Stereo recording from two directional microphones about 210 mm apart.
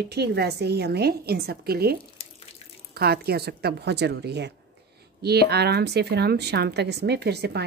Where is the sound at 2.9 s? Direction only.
50° right (ahead or behind).